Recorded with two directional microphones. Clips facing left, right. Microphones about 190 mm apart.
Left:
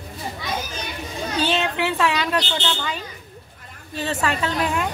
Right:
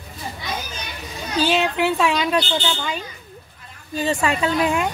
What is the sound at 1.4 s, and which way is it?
Speech, 10° right (ahead or behind).